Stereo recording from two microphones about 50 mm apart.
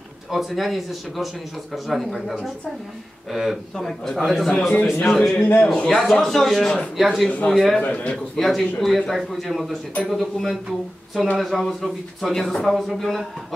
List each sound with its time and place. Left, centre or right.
0.3 s speech: centre
3.7 s a man's voice: centre
5.4 s a man's voice: left
5.9 s a man's voice: centre
7.0 s speech: centre
7.4 s a man's voice: centre
7.8 s a man's voice: left
8.4 s speech: centre